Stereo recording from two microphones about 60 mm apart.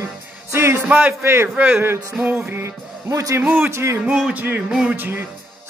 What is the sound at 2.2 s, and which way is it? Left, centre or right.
Music, right.